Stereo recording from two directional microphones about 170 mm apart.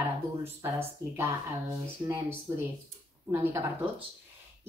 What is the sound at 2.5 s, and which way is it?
Speech, 20° right (ahead or behind).